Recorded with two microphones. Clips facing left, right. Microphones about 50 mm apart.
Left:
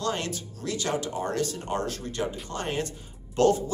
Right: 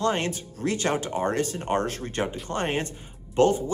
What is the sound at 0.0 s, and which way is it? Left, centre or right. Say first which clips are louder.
Speech: right 4 dB; right.